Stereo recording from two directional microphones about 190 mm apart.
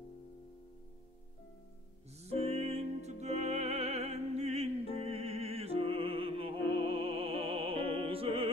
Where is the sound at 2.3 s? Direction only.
30° right (ahead or behind).